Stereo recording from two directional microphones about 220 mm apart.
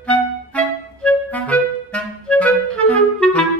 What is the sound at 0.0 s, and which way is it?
Clarinet, 5° left (ahead or behind).